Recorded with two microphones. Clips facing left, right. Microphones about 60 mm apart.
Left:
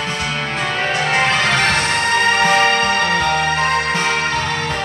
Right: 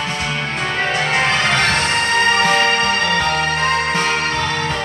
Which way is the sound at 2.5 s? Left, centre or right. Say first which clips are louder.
Left 1 dB; left.